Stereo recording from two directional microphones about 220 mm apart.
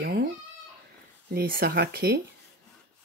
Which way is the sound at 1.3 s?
45° right (ahead or behind).